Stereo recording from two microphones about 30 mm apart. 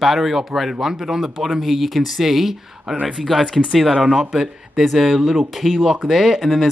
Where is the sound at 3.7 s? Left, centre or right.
Centre.